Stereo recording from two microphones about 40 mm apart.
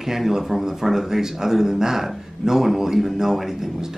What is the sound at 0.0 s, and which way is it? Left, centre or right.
A man's voice, centre.